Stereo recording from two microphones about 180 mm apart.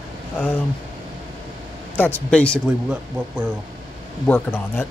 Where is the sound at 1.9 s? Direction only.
10° left (ahead or behind).